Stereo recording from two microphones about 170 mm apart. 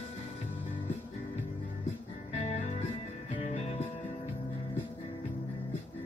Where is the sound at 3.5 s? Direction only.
40° left (ahead or behind).